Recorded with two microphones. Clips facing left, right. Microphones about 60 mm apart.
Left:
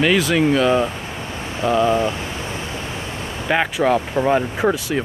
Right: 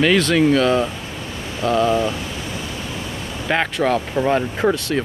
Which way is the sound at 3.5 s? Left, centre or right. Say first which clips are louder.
Left 1 dB; centre.